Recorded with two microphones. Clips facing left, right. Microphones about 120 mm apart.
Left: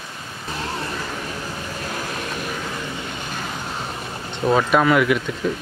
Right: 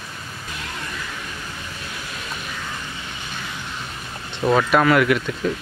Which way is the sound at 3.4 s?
45° left (ahead or behind).